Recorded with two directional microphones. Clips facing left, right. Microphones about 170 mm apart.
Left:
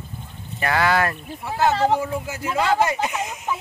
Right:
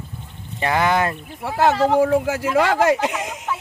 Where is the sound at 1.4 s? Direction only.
75° right (ahead or behind).